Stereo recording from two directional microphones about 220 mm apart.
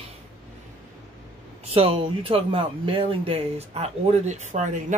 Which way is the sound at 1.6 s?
25° right (ahead or behind).